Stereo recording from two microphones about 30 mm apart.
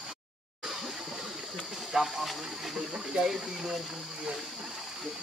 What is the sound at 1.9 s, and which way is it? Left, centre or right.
Speech, centre.